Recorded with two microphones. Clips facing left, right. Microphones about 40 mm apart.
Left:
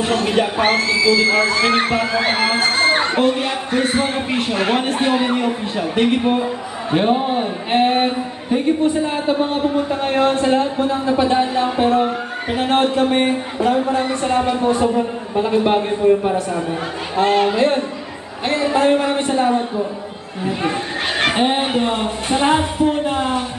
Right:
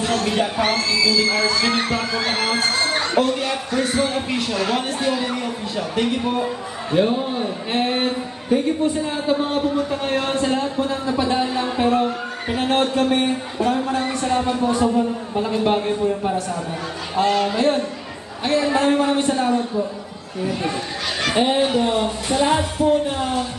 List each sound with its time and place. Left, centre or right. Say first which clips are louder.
0.0 s a woman's voice: left 3 dB; left
8.8 s speech: left 4 dB; left
9.4 s speech: left 3 dB; left
21.2 s speech: left 1 dB; left